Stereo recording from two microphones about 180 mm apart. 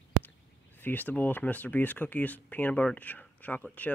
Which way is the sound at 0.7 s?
10° left (ahead or behind).